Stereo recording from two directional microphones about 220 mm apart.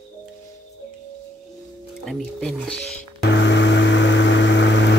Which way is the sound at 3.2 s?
55° left (ahead or behind).